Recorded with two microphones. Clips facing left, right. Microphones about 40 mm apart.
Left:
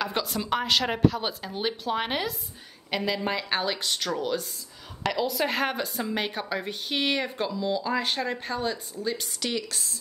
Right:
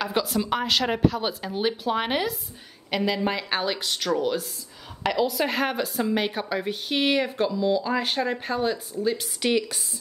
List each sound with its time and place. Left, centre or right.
0.0 s a woman's voice: centre
9.4 s speech: centre